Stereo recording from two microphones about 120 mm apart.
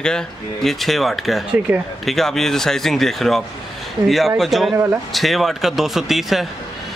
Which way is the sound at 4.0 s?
40° right (ahead or behind).